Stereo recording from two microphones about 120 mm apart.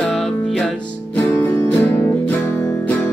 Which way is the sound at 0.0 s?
5° left (ahead or behind).